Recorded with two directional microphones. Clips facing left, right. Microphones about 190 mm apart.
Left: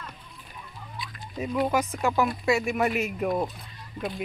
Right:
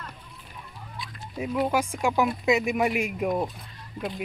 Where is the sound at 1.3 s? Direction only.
5° right (ahead or behind).